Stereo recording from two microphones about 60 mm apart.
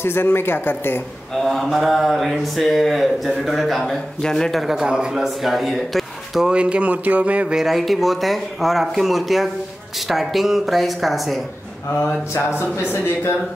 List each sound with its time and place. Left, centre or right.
0.0 s speech: left
1.3 s mantra: centre
6.5 s speech: centre
7.5 s mantra: centre
12.4 s speech: left